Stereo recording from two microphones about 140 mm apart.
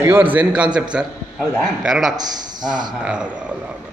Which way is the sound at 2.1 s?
30° right (ahead or behind).